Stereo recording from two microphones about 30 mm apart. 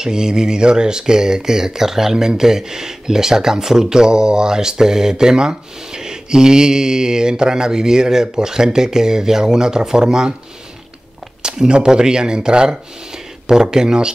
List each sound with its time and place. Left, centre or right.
0.0 s speech: right
11.4 s speech: right